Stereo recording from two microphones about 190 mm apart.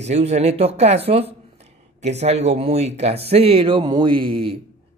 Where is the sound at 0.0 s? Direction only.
35° right (ahead or behind).